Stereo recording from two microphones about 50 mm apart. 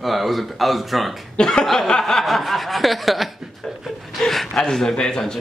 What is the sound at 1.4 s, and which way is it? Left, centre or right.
A man's voice, centre.